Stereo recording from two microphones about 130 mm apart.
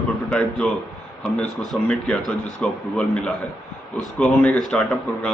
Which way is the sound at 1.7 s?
5° left (ahead or behind).